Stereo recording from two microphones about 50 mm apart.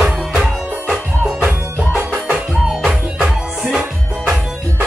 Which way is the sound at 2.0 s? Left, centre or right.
Right.